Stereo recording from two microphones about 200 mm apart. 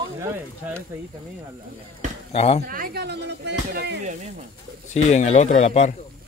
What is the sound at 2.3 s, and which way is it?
Speech, 30° left (ahead or behind).